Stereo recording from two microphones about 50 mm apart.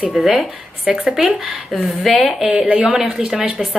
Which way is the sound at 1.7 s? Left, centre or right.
Centre.